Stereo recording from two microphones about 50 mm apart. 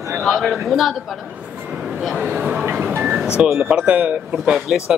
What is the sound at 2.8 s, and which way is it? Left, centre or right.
Music, right.